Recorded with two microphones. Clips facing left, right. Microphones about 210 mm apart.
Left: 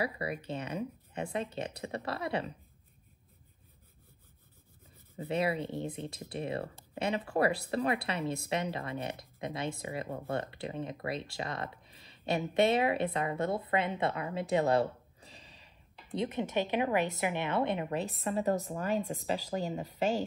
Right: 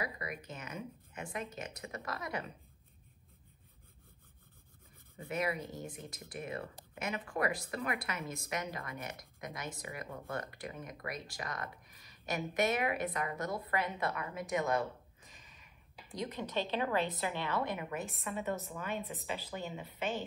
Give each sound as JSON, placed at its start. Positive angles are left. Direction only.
{"t": 0.0, "sound": "speech", "side_deg": 30}
{"t": 5.1, "sound": "speech", "side_deg": 30}